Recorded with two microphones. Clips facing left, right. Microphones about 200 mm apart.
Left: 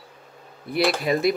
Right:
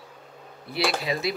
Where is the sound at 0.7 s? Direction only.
50° left (ahead or behind).